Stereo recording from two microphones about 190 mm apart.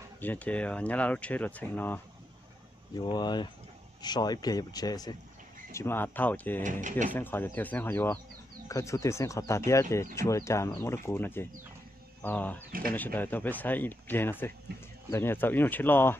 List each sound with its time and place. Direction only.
0.2 s speech: 10° left (ahead or behind)
3.0 s speech: 20° left (ahead or behind)
6.6 s speech: 40° right (ahead or behind)
7.1 s speech: 10° left (ahead or behind)